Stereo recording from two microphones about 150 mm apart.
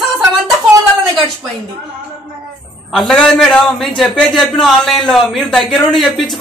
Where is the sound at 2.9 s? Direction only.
5° left (ahead or behind).